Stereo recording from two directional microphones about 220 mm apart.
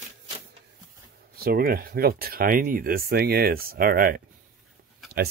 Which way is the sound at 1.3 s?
45° right (ahead or behind).